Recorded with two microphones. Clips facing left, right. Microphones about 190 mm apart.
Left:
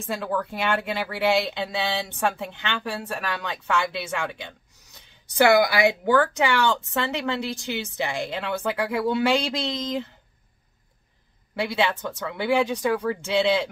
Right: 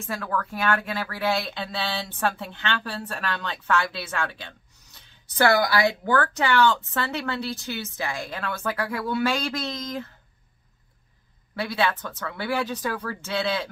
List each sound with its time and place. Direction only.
0.1 s speech: 20° left (ahead or behind)
11.6 s speech: 20° left (ahead or behind)